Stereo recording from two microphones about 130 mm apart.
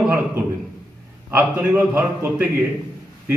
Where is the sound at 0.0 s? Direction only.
15° right (ahead or behind).